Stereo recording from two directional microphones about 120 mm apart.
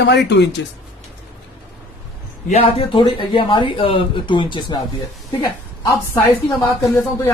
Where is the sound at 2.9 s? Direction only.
45° left (ahead or behind).